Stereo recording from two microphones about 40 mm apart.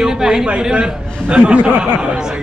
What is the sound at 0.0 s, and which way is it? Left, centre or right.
A man's voice, centre.